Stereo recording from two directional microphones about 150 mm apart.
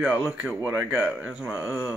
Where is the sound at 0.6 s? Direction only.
10° right (ahead or behind).